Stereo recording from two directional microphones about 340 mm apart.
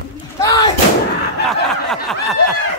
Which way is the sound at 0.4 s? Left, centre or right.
Centre.